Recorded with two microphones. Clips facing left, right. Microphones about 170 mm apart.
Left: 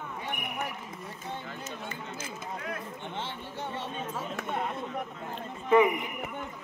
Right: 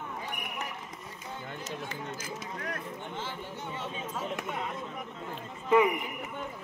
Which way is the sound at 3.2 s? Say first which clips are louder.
Left 1 dB; 65° left (ahead or behind).